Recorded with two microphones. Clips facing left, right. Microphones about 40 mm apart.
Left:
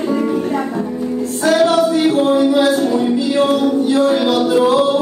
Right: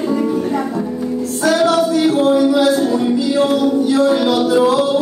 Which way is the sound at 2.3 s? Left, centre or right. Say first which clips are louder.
Even; left.